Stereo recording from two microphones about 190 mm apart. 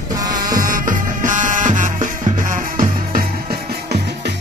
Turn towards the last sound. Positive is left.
turn(degrees=-50)  # may be behind; listen again after turning